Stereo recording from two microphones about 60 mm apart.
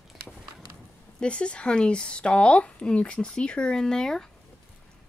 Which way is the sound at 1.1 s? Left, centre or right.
Centre.